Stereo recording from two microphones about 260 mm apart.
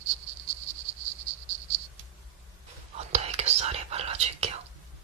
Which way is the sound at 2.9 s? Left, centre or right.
Right.